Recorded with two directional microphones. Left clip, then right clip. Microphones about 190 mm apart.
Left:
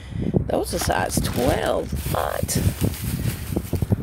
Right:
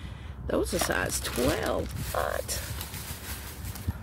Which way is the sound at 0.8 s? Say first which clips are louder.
Left 6 dB; 10° left (ahead or behind).